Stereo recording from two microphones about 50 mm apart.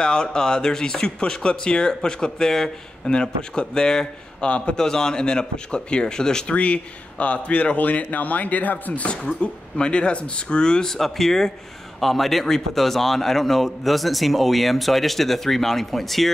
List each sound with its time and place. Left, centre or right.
0.0 s a man's voice: centre
4.5 s speech: left
4.7 s a man's voice: centre
6.5 s speech: left
9.1 s a man's voice: left; by 16.3 s centre